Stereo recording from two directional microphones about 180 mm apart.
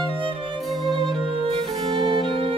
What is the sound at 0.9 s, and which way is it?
Music, 30° right (ahead or behind).